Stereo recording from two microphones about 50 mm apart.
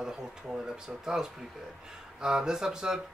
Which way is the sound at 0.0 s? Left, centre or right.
Centre.